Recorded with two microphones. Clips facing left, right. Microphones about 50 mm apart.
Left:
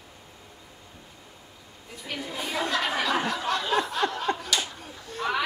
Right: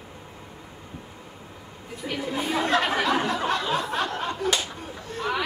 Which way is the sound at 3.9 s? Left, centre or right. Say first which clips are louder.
Right 1 dB; right.